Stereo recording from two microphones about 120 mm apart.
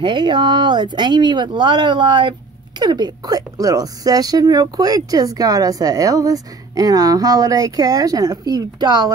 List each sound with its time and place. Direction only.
0.0 s speech: 40° right (ahead or behind)